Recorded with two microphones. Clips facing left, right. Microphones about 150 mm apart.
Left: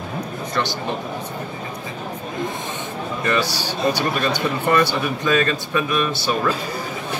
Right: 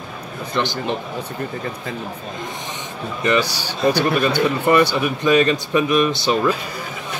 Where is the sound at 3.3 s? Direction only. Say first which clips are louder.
Right 3 dB; 15° right (ahead or behind).